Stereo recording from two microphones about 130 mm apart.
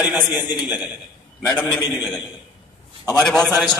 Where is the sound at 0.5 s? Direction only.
10° right (ahead or behind).